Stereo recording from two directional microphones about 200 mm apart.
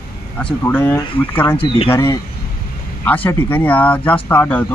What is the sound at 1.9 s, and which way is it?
Speech, 15° left (ahead or behind).